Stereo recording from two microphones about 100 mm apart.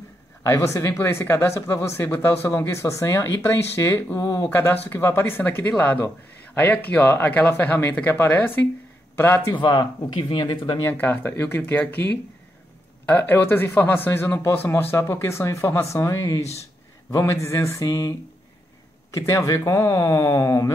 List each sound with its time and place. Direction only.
0.5 s speech: 30° left (ahead or behind)
4.2 s speech: 35° left (ahead or behind)
4.5 s a man's voice: 20° left (ahead or behind)
9.6 s speech: 50° left (ahead or behind)
10.8 s speech: 20° left (ahead or behind)
19.1 s speech: 35° left (ahead or behind)